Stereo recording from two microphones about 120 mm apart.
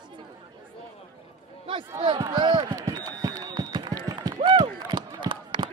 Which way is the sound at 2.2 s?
35° right (ahead or behind).